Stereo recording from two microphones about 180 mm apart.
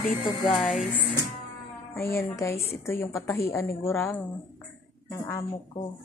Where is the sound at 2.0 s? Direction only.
15° left (ahead or behind).